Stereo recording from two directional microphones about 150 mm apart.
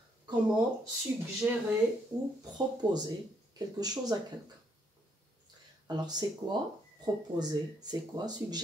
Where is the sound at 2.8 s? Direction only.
25° right (ahead or behind).